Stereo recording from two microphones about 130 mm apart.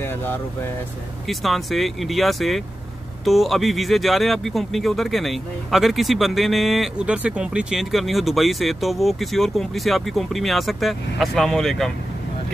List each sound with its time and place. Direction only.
0.0 s vehicle: 15° left (ahead or behind)
1.2 s speech: centre (ahead or behind)